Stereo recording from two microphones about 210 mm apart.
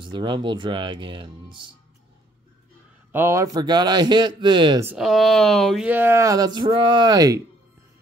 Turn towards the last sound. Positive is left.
turn(degrees=-15)  # may be behind; listen again after turning